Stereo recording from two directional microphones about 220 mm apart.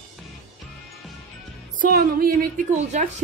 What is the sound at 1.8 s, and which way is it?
Speech, 40° right (ahead or behind).